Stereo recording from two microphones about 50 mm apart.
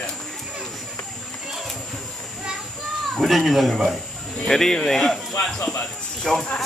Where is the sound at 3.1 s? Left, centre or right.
Centre.